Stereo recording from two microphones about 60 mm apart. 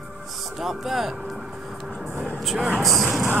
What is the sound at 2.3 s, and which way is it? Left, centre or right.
Vehicle, centre.